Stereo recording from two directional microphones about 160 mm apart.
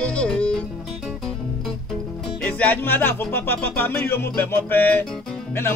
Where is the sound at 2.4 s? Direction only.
10° left (ahead or behind).